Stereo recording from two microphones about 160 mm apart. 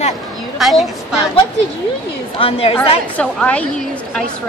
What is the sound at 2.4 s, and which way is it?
Speech, 35° left (ahead or behind).